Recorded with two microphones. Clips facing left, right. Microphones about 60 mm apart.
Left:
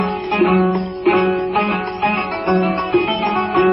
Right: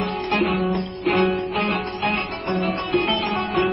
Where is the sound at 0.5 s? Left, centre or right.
Left.